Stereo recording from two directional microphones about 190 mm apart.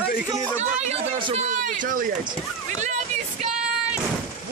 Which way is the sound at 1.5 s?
40° right (ahead or behind).